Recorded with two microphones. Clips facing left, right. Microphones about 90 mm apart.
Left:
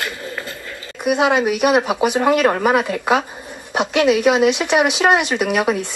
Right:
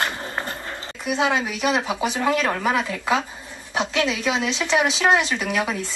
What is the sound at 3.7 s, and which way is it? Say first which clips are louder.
Speech: left 7 dB; 65° left (ahead or behind).